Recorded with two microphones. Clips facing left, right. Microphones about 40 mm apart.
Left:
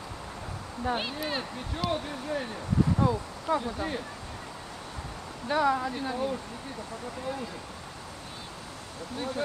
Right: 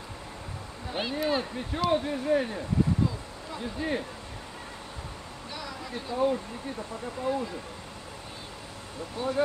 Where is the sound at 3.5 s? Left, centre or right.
Left.